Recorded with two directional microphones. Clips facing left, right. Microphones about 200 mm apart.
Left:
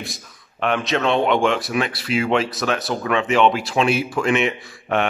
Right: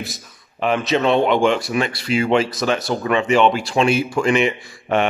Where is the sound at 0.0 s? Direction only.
Centre (ahead or behind).